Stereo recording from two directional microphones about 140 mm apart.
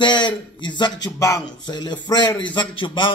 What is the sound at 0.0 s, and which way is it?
Speech, 35° left (ahead or behind).